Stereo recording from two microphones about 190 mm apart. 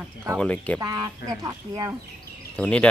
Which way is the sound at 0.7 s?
20° right (ahead or behind).